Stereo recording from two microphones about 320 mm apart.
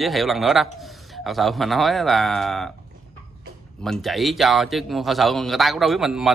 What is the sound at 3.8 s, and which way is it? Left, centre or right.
Speech, centre.